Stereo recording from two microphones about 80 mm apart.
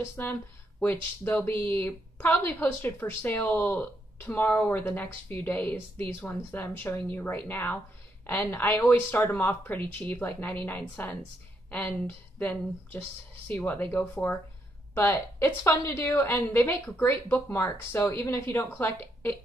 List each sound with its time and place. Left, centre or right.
0.0 s a woman's voice: left
9.4 s speech: left
12.4 s a woman's voice: left
16.0 s a woman's voice: left